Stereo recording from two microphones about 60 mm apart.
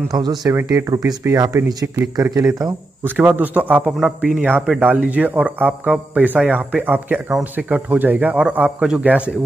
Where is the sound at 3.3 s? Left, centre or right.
Right.